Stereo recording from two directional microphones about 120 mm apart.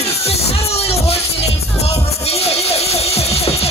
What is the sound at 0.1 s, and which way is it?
Music, 60° left (ahead or behind).